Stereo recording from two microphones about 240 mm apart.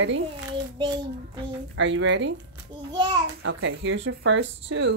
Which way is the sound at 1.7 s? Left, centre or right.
Right.